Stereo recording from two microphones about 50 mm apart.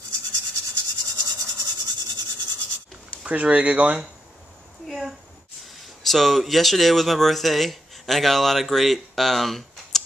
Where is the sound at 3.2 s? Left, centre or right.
Right.